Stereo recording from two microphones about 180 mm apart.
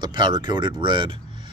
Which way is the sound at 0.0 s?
25° right (ahead or behind).